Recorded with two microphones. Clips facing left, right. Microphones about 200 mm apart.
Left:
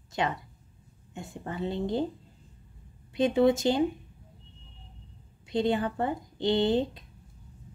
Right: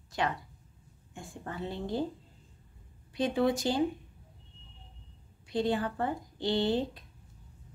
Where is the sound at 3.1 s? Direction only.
25° left (ahead or behind).